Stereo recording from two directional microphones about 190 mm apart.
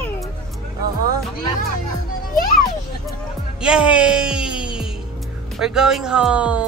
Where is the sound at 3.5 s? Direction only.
5° right (ahead or behind).